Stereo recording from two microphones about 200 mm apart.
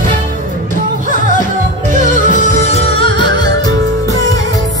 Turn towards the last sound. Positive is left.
turn(degrees=25)  # may be behind; listen again after turning